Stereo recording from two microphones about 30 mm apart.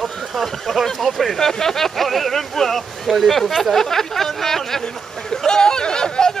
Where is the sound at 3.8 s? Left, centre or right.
Centre.